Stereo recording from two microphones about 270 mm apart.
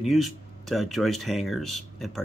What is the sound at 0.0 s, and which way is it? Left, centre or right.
Speech, centre.